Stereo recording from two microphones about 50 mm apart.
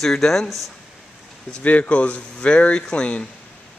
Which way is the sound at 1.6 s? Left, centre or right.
Left.